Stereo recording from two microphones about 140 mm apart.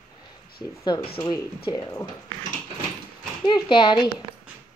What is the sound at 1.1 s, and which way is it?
Speech, 30° left (ahead or behind).